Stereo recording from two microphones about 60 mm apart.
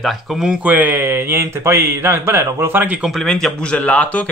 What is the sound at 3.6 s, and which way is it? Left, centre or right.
Speech, centre.